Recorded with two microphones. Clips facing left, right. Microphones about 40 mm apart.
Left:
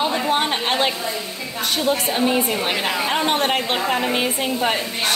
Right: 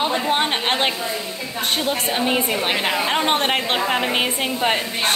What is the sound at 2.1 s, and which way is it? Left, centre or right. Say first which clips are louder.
A woman's voice: left 1 dB; centre.